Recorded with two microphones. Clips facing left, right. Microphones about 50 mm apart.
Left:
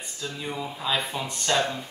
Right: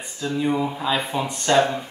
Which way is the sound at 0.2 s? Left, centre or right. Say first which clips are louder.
Right 10 dB; centre.